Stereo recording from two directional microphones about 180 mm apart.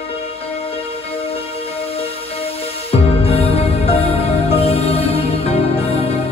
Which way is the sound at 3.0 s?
35° left (ahead or behind).